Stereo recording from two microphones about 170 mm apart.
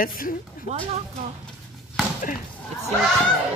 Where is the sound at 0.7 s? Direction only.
40° right (ahead or behind).